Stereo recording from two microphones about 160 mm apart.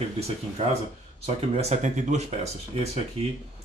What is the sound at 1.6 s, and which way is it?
Speech, 45° right (ahead or behind).